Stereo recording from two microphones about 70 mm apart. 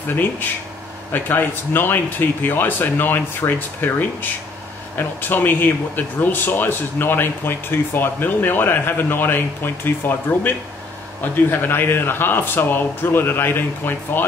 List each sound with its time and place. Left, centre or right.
0.1 s speech: left
11.5 s speech: left